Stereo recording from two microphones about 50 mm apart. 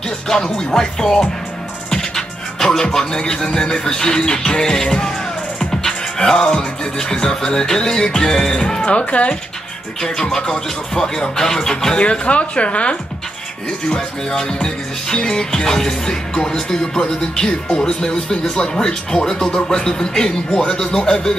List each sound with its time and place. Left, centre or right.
0.3 s speech: centre
1.9 s music: centre
8.8 s speech: left
10.0 s speech: centre